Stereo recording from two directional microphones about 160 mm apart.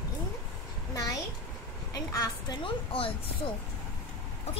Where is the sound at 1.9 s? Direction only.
25° left (ahead or behind).